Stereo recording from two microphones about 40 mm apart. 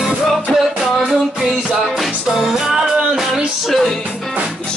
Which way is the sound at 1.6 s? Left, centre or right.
Centre.